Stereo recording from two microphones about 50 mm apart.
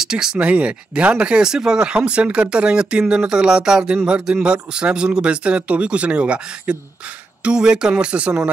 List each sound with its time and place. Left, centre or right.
0.0 s speech: centre
0.4 s speech: right